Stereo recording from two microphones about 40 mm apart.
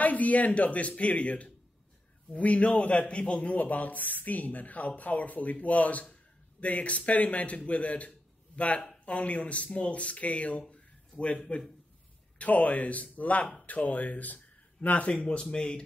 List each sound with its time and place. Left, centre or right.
0.0 s speech: left
10.7 s a sound: left
12.4 s speech: left
15.0 s speech: left